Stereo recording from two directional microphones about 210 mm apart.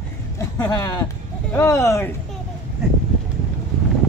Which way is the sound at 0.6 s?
20° left (ahead or behind).